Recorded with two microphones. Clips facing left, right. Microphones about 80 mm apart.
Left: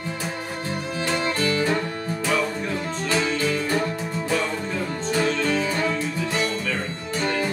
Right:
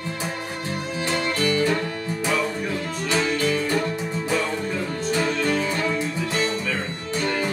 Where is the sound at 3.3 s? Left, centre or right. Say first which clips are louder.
Right 1 dB; left.